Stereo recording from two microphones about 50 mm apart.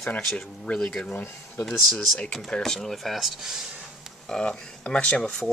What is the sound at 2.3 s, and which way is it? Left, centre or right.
Speech, centre.